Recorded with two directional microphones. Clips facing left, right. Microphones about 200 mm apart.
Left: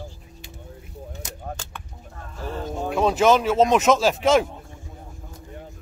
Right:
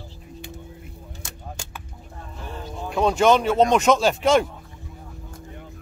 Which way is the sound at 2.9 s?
Centre (ahead or behind).